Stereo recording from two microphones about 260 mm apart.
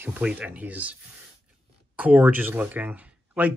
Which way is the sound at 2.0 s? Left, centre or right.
Centre.